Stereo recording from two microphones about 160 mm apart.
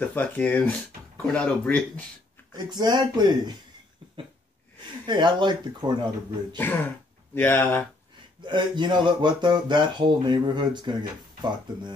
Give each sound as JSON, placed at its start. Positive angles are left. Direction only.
{"t": 0.0, "sound": "speech", "side_deg": 10}
{"t": 2.5, "sound": "speech", "side_deg": -25}
{"t": 5.0, "sound": "speech", "side_deg": -30}
{"t": 6.5, "sound": "speech", "side_deg": 10}
{"t": 8.5, "sound": "speech", "side_deg": -30}